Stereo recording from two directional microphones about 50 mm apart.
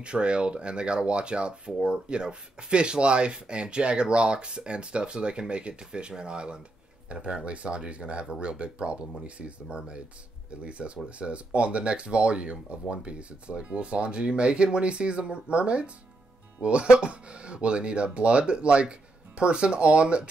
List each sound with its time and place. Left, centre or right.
0.0 s speech: right